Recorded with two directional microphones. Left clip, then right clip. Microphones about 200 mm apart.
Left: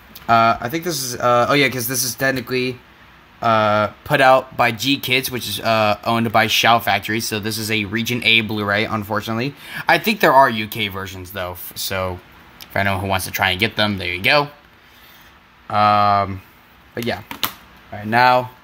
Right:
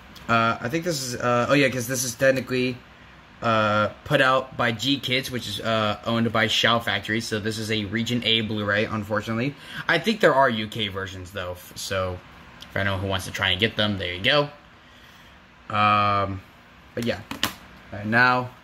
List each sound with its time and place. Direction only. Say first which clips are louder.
0.3 s speech: left 7 dB; 50° left (ahead or behind)
15.7 s speech: left 6 dB; 55° left (ahead or behind)